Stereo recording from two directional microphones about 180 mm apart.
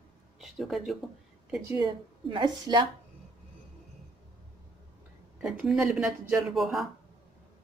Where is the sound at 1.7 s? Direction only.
25° right (ahead or behind).